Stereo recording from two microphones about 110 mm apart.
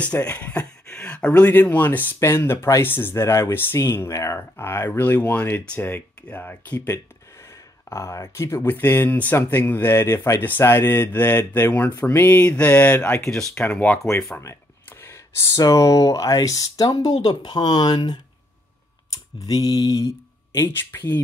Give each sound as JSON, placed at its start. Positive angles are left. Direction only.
{"t": 0.0, "sound": "speech", "side_deg": 15}
{"t": 14.4, "sound": "a sound", "side_deg": 25}
{"t": 15.6, "sound": "speech", "side_deg": 30}
{"t": 19.4, "sound": "speech", "side_deg": 35}
{"t": 20.5, "sound": "speech", "side_deg": 25}